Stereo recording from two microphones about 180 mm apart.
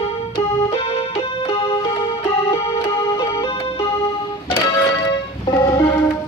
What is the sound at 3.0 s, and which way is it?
Music, 15° left (ahead or behind).